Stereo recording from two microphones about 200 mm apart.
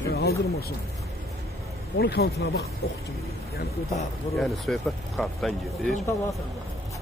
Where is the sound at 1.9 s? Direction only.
55° left (ahead or behind).